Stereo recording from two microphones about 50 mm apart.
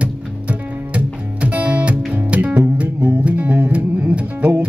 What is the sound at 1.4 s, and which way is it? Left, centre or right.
Music, right.